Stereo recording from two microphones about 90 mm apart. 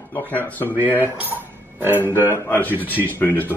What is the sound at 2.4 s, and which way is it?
Speech, 20° left (ahead or behind).